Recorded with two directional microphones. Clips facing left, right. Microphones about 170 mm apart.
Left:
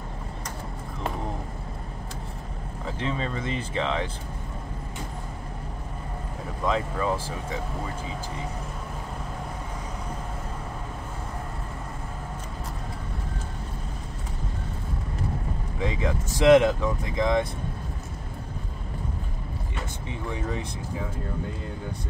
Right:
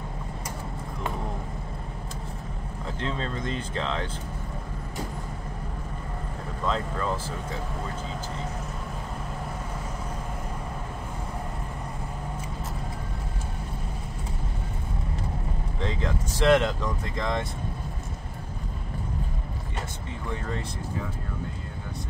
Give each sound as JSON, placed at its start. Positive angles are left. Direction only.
{"t": 3.0, "sound": "speech", "side_deg": 5}
{"t": 6.6, "sound": "speech", "side_deg": 10}
{"t": 15.8, "sound": "speech", "side_deg": 10}